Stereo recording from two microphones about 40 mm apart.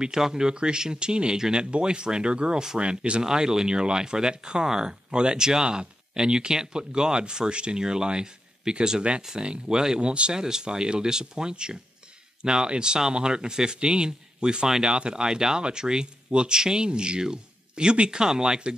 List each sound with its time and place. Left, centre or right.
0.0 s speech: centre